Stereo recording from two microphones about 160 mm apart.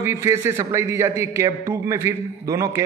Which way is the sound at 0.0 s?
15° right (ahead or behind).